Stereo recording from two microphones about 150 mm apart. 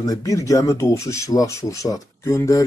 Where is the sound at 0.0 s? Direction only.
25° left (ahead or behind).